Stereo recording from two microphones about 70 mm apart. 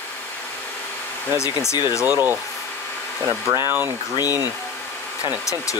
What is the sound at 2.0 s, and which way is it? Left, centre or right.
Speech, right.